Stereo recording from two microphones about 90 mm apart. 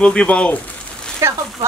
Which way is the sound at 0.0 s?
10° left (ahead or behind).